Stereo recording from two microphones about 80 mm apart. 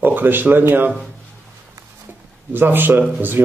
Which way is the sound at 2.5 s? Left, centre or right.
Right.